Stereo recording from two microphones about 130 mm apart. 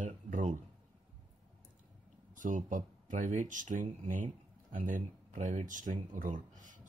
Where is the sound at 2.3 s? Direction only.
80° right.